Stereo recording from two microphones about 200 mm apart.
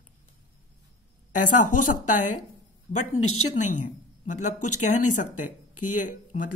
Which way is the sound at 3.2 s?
90° left.